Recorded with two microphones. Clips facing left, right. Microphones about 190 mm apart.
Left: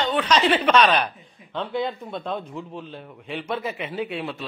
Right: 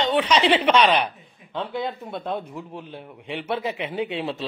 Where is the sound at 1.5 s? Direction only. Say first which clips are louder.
Left 1 dB; 5° right (ahead or behind).